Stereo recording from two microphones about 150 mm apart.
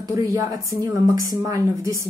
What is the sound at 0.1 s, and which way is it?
Speech, 20° right (ahead or behind).